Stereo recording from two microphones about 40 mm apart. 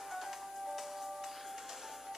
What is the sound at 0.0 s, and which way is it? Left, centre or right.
Music, centre.